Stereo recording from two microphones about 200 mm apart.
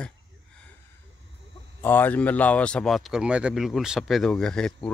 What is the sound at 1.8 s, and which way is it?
Speech, 10° left (ahead or behind).